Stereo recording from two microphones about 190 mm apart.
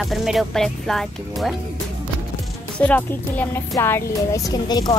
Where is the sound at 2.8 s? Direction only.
10° left (ahead or behind).